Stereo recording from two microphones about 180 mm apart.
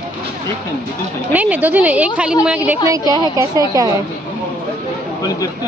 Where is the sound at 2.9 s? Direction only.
20° right (ahead or behind).